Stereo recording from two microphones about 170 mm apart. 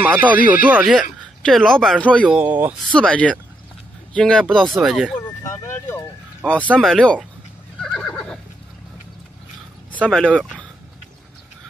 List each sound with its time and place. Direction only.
0.0 s speech: 10° right (ahead or behind)
1.4 s speech: 5° left (ahead or behind)
2.2 s speech: 10° right (ahead or behind)
2.9 s speech: 5° left (ahead or behind)
5.4 s vehicle: 15° left (ahead or behind)
6.5 s speech: 10° left (ahead or behind)
7.8 s neigh: 5° left (ahead or behind)
10.0 s speech: 5° left (ahead or behind)